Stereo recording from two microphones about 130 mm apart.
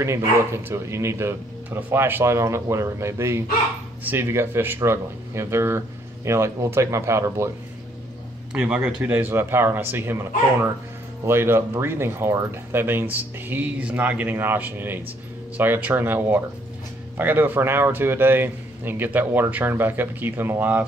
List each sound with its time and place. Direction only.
0.0 s speech: 20° right (ahead or behind)
8.5 s speech: 10° right (ahead or behind)